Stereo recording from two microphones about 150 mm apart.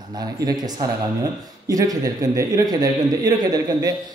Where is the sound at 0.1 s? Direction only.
25° right (ahead or behind).